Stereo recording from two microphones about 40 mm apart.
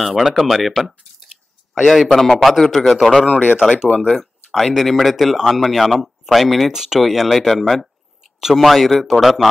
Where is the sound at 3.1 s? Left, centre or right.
Left.